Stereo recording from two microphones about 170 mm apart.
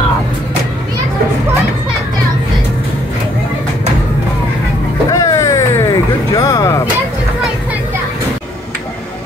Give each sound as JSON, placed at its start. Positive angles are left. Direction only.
{"t": 5.1, "sound": "vehicle", "side_deg": 20}